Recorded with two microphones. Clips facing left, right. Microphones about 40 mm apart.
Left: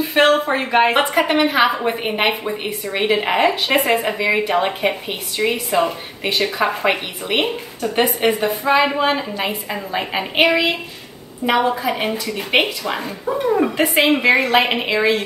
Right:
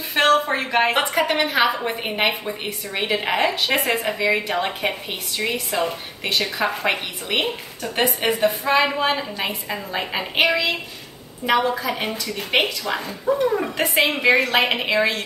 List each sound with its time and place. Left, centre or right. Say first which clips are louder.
0.1 s a woman's voice: left 2 dB; centre